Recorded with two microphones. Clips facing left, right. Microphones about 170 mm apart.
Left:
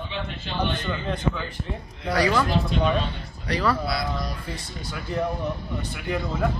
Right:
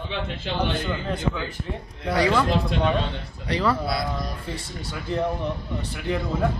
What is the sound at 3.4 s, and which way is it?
Speech, 25° right (ahead or behind).